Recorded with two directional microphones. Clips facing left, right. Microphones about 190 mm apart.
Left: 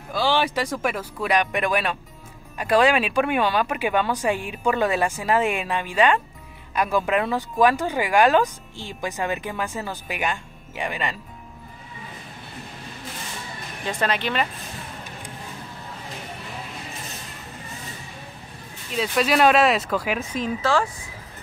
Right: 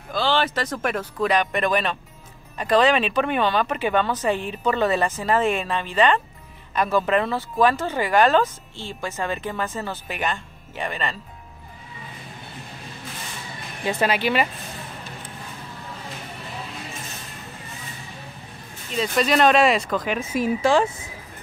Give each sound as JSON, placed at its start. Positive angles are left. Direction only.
{"t": 0.1, "sound": "speech", "side_deg": 10}
{"t": 13.8, "sound": "speech", "side_deg": -10}
{"t": 18.9, "sound": "speech", "side_deg": 5}
{"t": 20.3, "sound": "speech", "side_deg": -10}